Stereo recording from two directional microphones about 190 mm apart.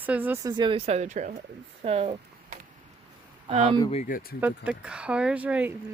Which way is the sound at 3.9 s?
45° left (ahead or behind).